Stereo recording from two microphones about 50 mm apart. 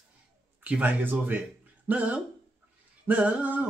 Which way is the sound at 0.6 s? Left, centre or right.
Right.